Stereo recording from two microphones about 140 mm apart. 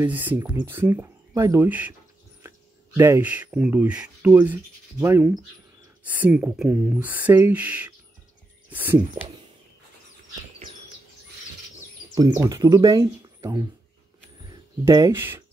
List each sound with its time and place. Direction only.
0.0 s speech: 10° right (ahead or behind)
3.0 s speech: 15° right (ahead or behind)
12.4 s speech: 25° right (ahead or behind)
14.9 s speech: 25° right (ahead or behind)